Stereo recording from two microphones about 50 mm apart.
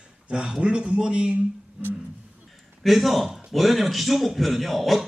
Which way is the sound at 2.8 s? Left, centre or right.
Centre.